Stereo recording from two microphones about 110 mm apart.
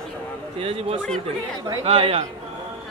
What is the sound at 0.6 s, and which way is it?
A man's voice, 60° right (ahead or behind).